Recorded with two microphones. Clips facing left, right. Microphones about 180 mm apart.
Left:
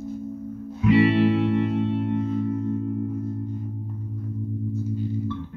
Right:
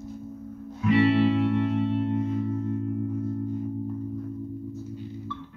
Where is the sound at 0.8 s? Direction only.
10° left (ahead or behind).